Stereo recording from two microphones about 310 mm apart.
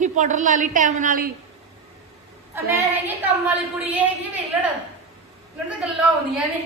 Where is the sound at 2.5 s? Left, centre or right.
Centre.